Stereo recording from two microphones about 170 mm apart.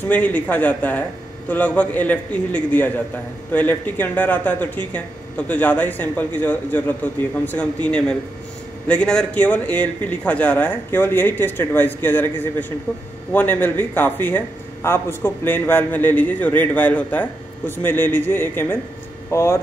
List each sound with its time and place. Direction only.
0.1 s a man's voice: 10° left (ahead or behind)